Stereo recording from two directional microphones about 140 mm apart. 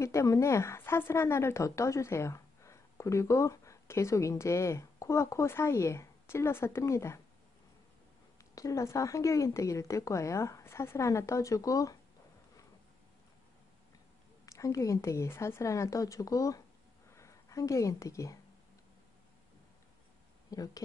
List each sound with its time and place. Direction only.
0.0 s speech: 20° left (ahead or behind)
8.4 s a woman's voice: 25° left (ahead or behind)
14.4 s a woman's voice: 25° left (ahead or behind)
20.5 s a woman's voice: 25° left (ahead or behind)